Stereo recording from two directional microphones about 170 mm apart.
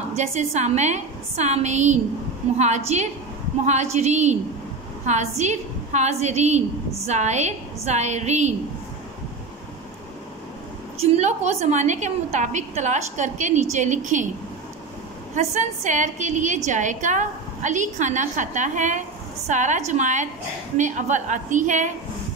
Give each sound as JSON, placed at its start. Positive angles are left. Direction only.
{"t": 0.1, "sound": "a woman's voice", "side_deg": -40}
{"t": 11.0, "sound": "a woman's voice", "side_deg": -40}
{"t": 15.3, "sound": "a woman's voice", "side_deg": -45}